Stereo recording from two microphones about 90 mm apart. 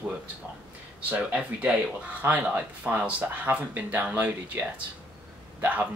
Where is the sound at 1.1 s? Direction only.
15° right (ahead or behind).